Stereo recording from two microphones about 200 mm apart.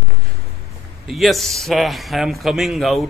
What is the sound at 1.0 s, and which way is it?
Speech, centre (ahead or behind).